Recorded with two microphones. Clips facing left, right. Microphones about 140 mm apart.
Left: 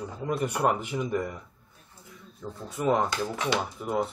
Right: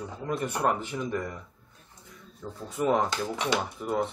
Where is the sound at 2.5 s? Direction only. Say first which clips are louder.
Even; centre (ahead or behind).